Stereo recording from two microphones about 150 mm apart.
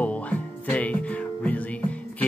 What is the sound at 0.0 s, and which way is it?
Music, 10° left (ahead or behind).